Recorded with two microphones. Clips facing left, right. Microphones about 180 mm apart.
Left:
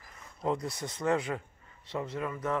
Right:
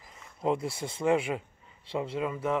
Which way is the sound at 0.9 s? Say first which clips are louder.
Right 3 dB; 10° right (ahead or behind).